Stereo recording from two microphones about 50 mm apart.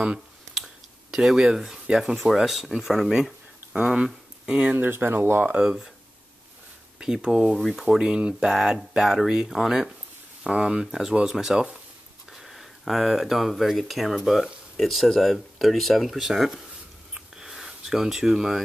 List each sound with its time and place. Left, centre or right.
1.1 s speech: centre
4.7 s speech: right
5.6 s speech: centre
7.7 s speech: centre
8.2 s speech: right
8.5 s speech: centre
12.3 s speech: centre
17.1 s a sound: centre